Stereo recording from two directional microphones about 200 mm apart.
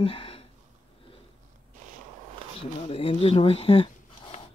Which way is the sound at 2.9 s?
30° left (ahead or behind).